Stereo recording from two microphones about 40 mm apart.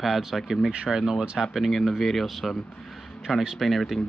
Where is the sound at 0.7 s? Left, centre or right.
Right.